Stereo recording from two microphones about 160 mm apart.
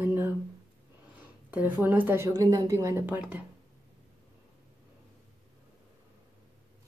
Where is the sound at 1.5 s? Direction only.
10° right (ahead or behind).